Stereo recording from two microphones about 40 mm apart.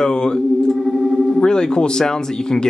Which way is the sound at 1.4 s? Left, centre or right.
Centre.